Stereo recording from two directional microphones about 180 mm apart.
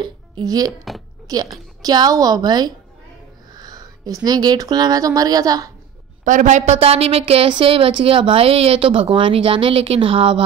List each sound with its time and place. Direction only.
0.0 s a woman's voice: 20° right (ahead or behind)
6.2 s a woman's voice: 45° right (ahead or behind)